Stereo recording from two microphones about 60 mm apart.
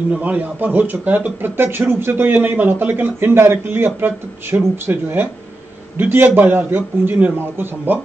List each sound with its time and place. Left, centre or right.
0.1 s speech: right